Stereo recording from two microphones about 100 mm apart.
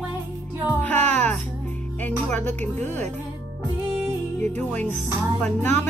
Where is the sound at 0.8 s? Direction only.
15° left (ahead or behind).